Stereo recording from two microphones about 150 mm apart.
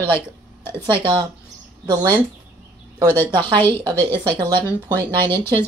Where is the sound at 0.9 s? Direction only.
35° right (ahead or behind).